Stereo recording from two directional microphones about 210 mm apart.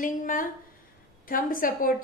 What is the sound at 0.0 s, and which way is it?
A woman's voice, 40° left (ahead or behind).